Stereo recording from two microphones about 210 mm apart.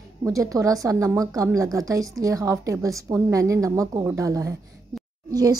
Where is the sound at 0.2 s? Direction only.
15° right (ahead or behind).